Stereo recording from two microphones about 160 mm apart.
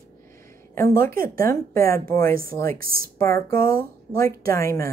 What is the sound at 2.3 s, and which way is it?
Speech, 65° right (ahead or behind).